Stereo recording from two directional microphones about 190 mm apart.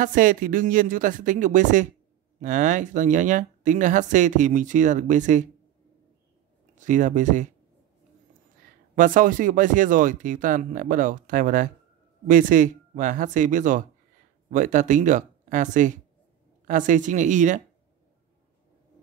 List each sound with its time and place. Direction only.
0.0 s speech: 45° right (ahead or behind)
6.7 s speech: 40° right (ahead or behind)
8.9 s speech: 45° right (ahead or behind)